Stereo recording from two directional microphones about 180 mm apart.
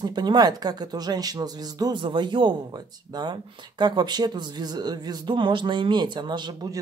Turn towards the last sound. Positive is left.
turn(degrees=-25)  # may be behind; listen again after turning